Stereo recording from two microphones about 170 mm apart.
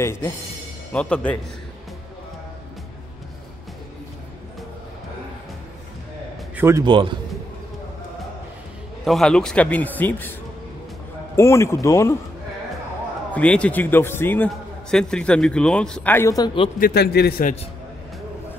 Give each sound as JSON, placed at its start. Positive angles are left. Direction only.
{"t": 0.0, "sound": "a man's voice", "side_deg": 15}
{"t": 6.5, "sound": "a sound", "side_deg": -15}
{"t": 6.8, "sound": "a man's voice", "side_deg": -30}
{"t": 9.0, "sound": "a man's voice", "side_deg": 0}
{"t": 11.3, "sound": "a man's voice", "side_deg": 15}
{"t": 13.3, "sound": "a man's voice", "side_deg": 5}
{"t": 16.8, "sound": "a man's voice", "side_deg": 70}